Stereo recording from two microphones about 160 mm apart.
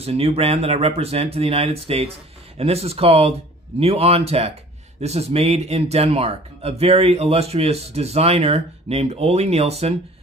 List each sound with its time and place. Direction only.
0.0 s speech: 40° right (ahead or behind)